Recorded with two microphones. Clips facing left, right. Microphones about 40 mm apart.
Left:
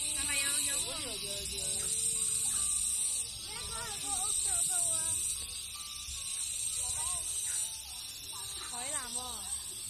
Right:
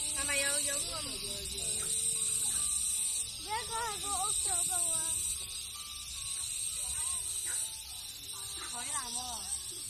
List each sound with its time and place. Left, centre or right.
0.3 s a sound: centre
0.6 s speech: left
3.4 s speech: right
8.7 s snake: left